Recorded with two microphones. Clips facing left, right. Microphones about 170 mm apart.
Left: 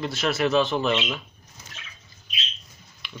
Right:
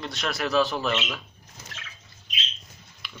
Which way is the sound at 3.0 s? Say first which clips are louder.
Left 4 dB; centre (ahead or behind).